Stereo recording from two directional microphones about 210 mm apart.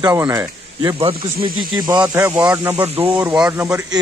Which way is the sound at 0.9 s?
25° right (ahead or behind).